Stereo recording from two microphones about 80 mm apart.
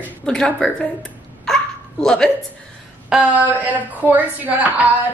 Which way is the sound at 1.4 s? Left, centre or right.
Centre.